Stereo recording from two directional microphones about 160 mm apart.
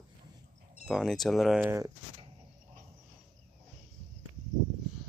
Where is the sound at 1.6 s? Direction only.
15° right (ahead or behind).